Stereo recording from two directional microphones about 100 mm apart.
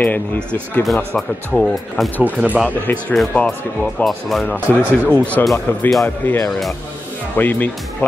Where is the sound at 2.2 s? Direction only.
15° right (ahead or behind).